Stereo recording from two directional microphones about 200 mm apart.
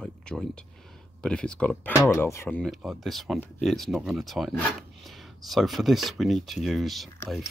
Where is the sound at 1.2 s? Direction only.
5° left (ahead or behind).